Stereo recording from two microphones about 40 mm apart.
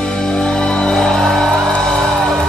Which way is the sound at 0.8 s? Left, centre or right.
Centre.